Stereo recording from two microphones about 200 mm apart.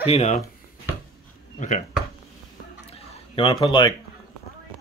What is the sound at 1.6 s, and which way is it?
Speech, 40° left (ahead or behind).